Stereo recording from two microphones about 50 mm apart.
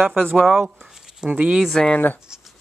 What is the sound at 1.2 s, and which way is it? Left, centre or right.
Speech, centre.